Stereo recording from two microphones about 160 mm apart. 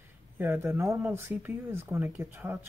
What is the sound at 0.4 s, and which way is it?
Speech, 15° right (ahead or behind).